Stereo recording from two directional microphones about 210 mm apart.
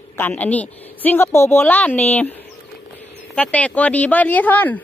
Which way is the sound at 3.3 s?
5° left (ahead or behind).